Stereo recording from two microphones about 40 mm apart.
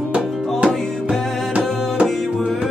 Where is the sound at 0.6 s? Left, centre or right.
Right.